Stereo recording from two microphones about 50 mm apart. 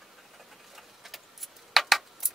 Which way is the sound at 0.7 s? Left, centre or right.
Centre.